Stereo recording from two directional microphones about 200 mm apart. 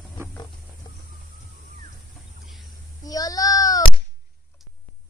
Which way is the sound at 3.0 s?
20° left (ahead or behind).